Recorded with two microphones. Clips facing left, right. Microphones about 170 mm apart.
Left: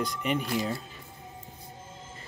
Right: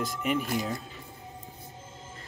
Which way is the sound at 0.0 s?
5° right (ahead or behind).